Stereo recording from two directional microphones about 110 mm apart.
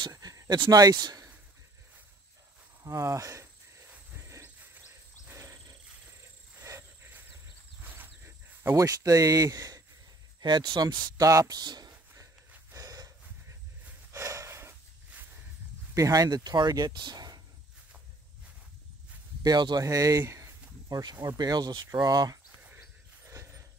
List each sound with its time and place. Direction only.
0.1 s dog: 30° right (ahead or behind)
0.6 s speech: 35° right (ahead or behind)
2.8 s a sound: 30° right (ahead or behind)
5.3 s wild animals: 25° right (ahead or behind)
6.6 s a sound: 25° right (ahead or behind)
8.7 s speech: 30° right (ahead or behind)
10.4 s speech: 45° right (ahead or behind)
12.7 s snort: 30° right (ahead or behind)
14.1 s a sound: 25° right (ahead or behind)
15.9 s speech: 30° right (ahead or behind)
19.4 s speech: 40° right (ahead or behind)
23.2 s a sound: 25° right (ahead or behind)